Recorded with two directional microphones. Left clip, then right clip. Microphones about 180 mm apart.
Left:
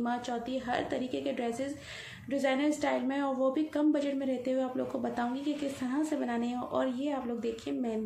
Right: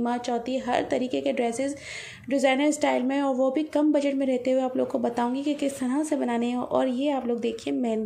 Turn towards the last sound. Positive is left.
turn(degrees=-40)  # may be behind; listen again after turning